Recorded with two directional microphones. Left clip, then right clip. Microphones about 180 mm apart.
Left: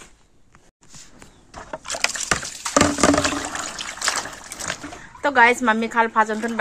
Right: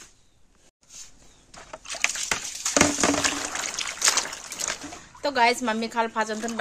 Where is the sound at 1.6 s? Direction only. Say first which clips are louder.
Left 3 dB; 35° left (ahead or behind).